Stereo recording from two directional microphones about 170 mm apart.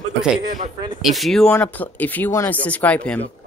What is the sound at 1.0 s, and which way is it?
Speech, centre (ahead or behind).